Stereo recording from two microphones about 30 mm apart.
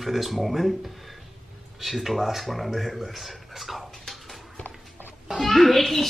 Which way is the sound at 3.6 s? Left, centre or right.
Centre.